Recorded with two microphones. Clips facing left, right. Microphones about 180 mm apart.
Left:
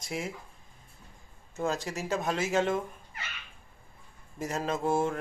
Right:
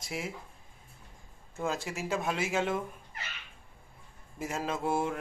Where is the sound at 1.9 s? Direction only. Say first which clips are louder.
Left 2 dB; 10° right (ahead or behind).